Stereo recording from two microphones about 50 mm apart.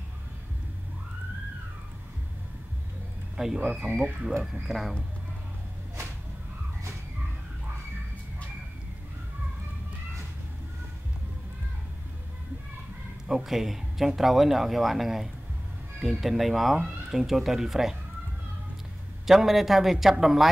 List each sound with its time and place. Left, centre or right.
3.5 s speech: right
4.4 s speech: centre
13.3 s a man's voice: centre
19.2 s a man's voice: centre